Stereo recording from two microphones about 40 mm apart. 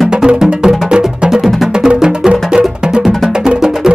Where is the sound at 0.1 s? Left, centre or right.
Centre.